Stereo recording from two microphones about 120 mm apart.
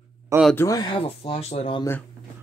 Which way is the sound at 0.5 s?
30° left (ahead or behind).